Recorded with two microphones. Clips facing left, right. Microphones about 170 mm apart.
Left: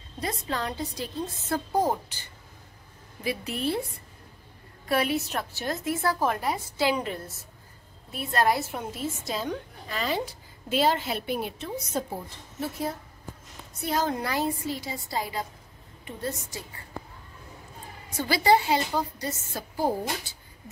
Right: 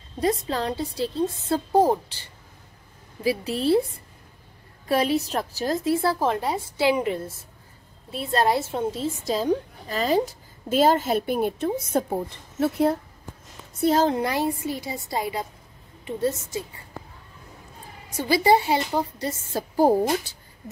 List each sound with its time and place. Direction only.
0.2 s a woman's voice: 35° right (ahead or behind)
4.8 s a woman's voice: 35° right (ahead or behind); by 13.0 s 65° right (ahead or behind)
14.0 s a woman's voice: 25° right (ahead or behind)
18.1 s a woman's voice: 25° right (ahead or behind)